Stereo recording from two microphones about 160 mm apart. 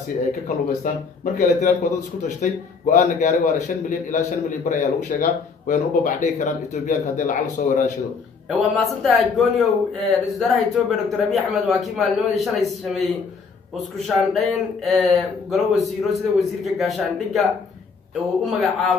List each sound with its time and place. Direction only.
0.5 s a man's voice: 45° left (ahead or behind)
8.5 s a man's voice: centre (ahead or behind)